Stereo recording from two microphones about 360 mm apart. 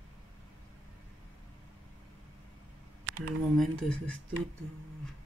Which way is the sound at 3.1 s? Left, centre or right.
Right.